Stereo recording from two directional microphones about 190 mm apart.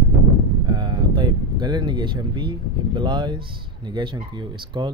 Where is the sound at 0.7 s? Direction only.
25° right (ahead or behind).